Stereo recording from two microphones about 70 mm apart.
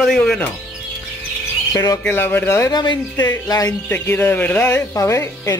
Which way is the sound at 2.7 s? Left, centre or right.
Left.